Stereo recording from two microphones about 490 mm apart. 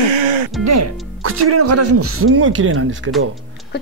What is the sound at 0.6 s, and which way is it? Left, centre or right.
Speech, right.